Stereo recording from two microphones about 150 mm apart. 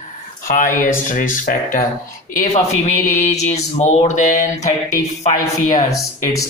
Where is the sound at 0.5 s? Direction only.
60° left (ahead or behind).